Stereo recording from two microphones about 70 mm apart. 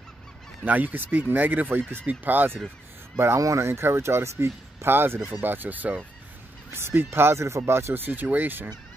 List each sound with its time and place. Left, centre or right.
0.7 s speech: right
3.3 s speech: right
6.7 s speech: right